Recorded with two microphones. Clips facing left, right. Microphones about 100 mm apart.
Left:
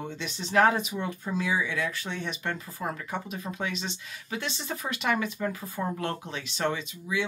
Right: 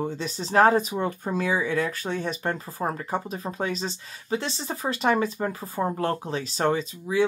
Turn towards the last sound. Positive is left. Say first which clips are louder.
# right 7 dB
turn(degrees=-40)  # may be behind; listen again after turning